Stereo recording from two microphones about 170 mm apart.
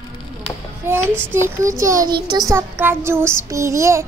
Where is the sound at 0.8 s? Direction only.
15° right (ahead or behind).